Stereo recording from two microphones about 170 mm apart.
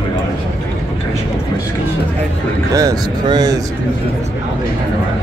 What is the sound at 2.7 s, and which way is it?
Speech, 20° right (ahead or behind).